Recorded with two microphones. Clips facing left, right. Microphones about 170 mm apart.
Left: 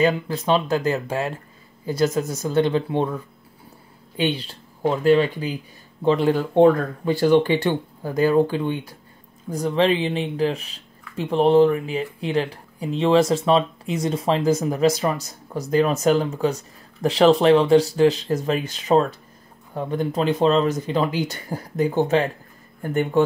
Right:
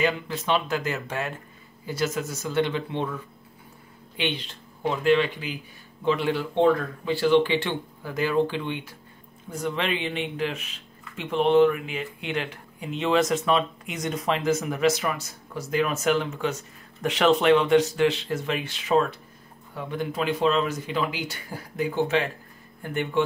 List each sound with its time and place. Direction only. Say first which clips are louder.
0.0 s speech: left 6 dB; 35° left (ahead or behind)
4.2 s speech: left 6 dB; 35° left (ahead or behind)